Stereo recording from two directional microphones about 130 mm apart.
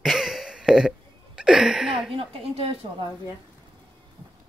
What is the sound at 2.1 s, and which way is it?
Speech, 45° right (ahead or behind).